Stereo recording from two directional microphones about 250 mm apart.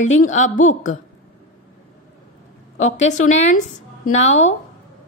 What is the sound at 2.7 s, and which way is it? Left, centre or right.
A woman's voice, left.